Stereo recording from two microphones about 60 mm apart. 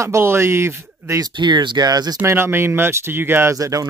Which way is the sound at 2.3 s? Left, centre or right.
Right.